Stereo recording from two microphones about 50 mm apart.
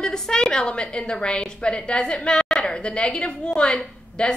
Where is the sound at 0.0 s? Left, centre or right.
Centre.